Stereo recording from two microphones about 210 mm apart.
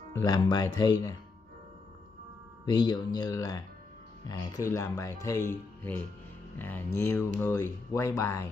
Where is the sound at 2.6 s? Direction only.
20° left (ahead or behind).